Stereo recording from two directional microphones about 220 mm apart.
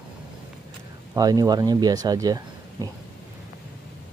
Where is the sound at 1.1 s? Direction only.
15° right (ahead or behind).